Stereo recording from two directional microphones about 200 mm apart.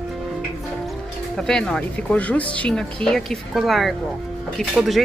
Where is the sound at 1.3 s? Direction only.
5° left (ahead or behind).